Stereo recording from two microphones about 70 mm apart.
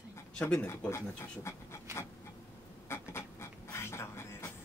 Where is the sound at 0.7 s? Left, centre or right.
Left.